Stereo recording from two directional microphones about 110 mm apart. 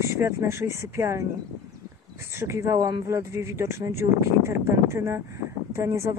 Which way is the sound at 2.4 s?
25° right (ahead or behind).